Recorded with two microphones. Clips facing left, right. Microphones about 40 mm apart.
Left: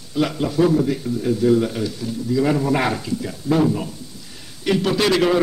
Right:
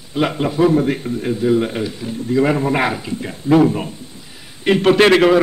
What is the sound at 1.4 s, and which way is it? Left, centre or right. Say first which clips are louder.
A man's voice: right 1 dB; right.